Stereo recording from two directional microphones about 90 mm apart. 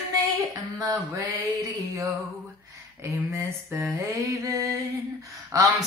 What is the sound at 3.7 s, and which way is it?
Mantra, 35° right (ahead or behind).